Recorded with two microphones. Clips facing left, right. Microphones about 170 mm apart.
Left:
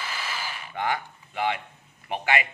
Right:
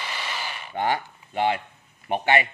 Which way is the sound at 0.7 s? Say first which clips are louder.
Right 3 dB; 30° right (ahead or behind).